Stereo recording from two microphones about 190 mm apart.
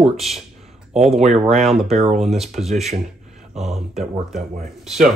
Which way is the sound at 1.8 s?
35° right (ahead or behind).